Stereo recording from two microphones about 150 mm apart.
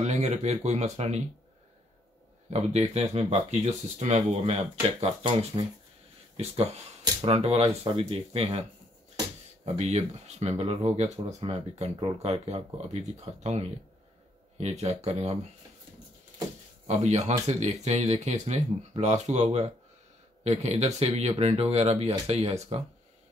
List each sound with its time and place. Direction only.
0.0 s speech: 50° right (ahead or behind)
2.9 s speech: 45° right (ahead or behind)
9.7 s speech: 45° right (ahead or behind)
16.8 s speech: 50° right (ahead or behind)